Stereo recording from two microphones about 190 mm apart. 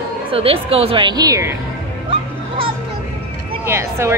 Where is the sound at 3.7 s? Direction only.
15° right (ahead or behind).